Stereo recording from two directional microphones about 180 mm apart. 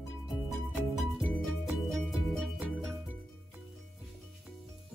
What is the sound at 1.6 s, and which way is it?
Music, centre (ahead or behind).